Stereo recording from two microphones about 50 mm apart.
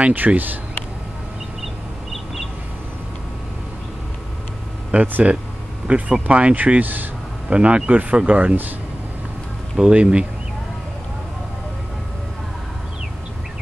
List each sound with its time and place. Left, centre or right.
0.0 s speech: right
4.9 s speech: right
7.4 s speech: right
9.8 s speech: centre